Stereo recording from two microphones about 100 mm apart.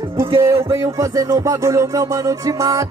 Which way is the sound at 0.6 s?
30° right (ahead or behind).